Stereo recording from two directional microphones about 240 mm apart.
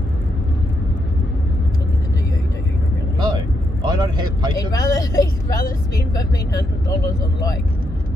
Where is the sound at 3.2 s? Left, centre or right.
Centre.